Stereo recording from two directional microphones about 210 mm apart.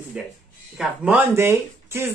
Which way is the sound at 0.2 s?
5° right (ahead or behind).